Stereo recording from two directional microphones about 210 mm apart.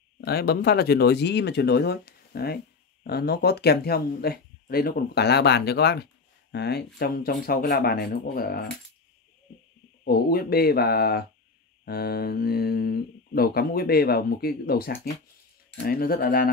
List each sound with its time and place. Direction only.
0.2 s speech: 50° left (ahead or behind)
10.0 s speech: 45° left (ahead or behind)